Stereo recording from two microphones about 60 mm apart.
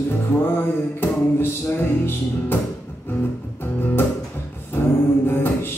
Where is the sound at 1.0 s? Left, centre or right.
Left.